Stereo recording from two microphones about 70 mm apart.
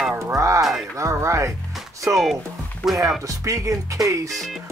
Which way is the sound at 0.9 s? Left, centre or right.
Right.